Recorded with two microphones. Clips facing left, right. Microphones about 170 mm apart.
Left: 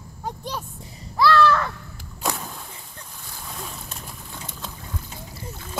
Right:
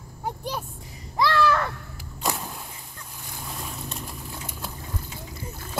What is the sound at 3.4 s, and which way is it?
Boat, centre (ahead or behind).